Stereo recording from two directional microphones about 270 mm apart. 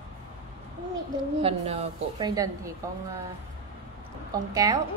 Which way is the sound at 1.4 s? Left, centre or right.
Right.